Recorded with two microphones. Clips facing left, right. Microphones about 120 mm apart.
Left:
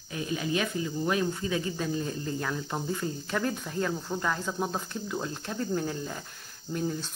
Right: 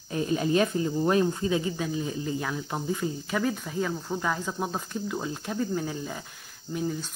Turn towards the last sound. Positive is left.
turn(degrees=-5)  # may be behind; listen again after turning